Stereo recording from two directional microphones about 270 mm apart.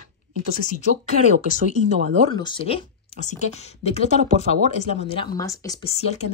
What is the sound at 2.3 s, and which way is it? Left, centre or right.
Speech, centre.